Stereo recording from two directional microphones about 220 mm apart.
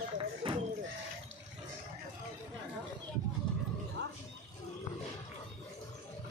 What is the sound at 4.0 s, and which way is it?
Wild animals, 55° right (ahead or behind).